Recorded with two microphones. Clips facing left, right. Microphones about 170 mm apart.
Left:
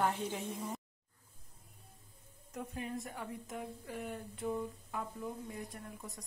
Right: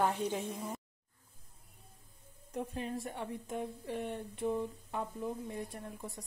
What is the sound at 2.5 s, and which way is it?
Speech, 30° right (ahead or behind).